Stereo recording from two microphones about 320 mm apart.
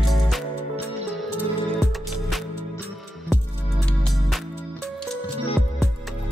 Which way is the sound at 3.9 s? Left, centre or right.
Centre.